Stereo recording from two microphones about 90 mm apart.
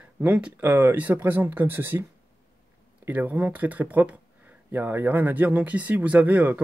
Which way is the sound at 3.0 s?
15° right (ahead or behind).